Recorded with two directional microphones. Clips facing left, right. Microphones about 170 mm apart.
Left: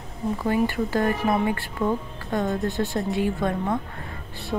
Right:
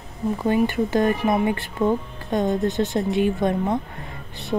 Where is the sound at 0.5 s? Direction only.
20° right (ahead or behind).